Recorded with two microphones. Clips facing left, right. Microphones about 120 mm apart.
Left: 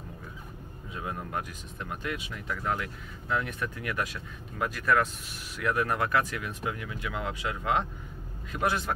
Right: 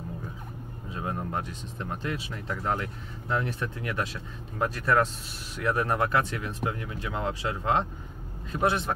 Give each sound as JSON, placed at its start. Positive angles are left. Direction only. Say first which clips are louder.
{"t": 0.9, "sound": "speech", "louder": "right 3 dB", "side_deg": -30}